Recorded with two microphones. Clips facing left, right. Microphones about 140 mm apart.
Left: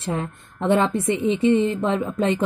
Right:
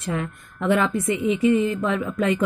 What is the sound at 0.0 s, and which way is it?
A woman's voice, 30° left (ahead or behind).